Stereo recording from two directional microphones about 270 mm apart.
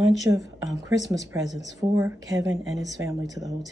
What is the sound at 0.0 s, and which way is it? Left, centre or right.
Speech, centre.